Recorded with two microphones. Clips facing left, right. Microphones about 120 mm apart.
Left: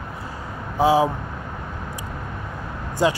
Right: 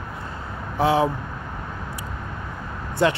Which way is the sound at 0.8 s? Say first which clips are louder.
Left 2 dB; 15° left (ahead or behind).